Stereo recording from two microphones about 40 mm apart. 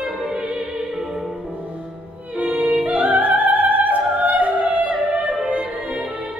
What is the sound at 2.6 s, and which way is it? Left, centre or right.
Music, right.